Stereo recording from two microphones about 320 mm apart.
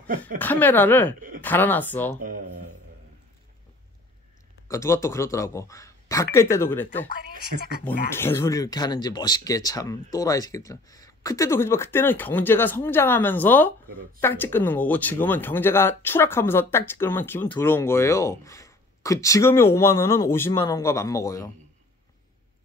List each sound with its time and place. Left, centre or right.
0.4 s speech: centre
4.6 s speech: centre
7.5 s speech: right
8.1 s speech: centre